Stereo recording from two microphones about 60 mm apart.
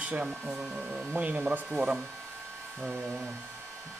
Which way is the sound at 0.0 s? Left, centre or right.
Right.